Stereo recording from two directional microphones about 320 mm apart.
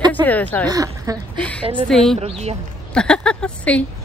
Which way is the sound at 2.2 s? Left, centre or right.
Centre.